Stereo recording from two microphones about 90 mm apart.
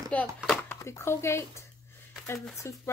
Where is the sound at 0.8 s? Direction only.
35° left (ahead or behind).